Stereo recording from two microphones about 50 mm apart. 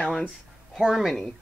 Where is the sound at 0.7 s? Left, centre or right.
Centre.